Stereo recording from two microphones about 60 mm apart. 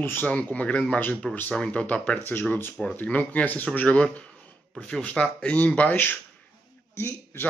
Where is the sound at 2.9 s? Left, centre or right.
Left.